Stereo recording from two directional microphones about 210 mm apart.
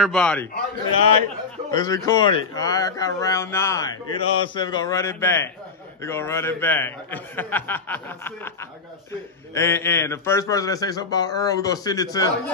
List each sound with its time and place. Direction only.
0.0 s a man's voice: 5° left (ahead or behind)
1.7 s a man's voice: 20° left (ahead or behind)